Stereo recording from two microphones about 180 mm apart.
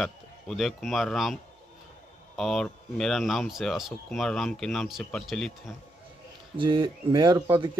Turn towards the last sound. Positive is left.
turn(degrees=-25)  # may be behind; listen again after turning